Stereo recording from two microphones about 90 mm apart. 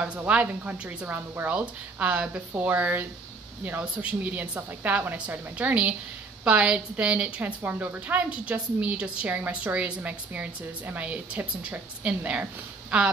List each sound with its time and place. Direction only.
0.0 s a woman's voice: 15° right (ahead or behind)